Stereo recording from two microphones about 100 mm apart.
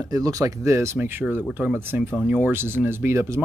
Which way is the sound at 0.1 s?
35° right (ahead or behind).